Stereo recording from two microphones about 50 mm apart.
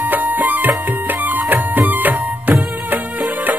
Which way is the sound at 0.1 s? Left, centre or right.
Right.